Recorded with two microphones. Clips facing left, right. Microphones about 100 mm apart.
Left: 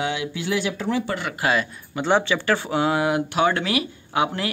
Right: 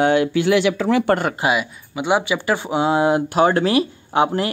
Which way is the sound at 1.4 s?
15° right (ahead or behind).